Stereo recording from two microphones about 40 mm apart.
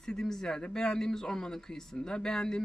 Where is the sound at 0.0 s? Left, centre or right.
Centre.